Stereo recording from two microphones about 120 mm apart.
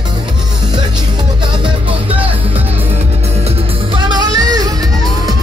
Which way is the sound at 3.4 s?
45° right (ahead or behind).